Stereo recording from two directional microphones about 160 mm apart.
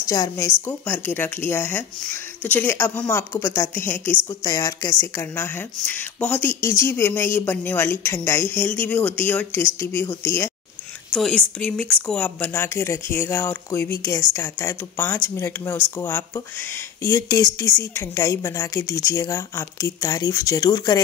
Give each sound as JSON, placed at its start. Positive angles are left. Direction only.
{"t": 0.0, "sound": "a woman's voice", "side_deg": 20}
{"t": 11.1, "sound": "speech", "side_deg": 5}